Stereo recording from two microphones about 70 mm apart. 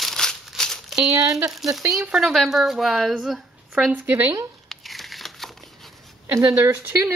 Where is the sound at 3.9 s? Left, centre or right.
Right.